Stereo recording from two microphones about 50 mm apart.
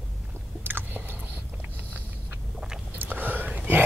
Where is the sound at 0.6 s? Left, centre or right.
Right.